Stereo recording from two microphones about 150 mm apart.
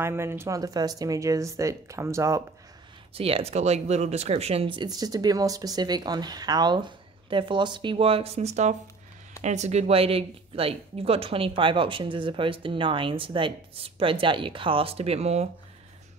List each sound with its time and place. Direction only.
0.0 s speech: 15° right (ahead or behind)
3.2 s speech: 40° right (ahead or behind)